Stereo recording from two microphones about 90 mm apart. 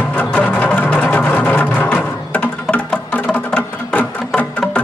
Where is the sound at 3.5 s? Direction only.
15° left (ahead or behind).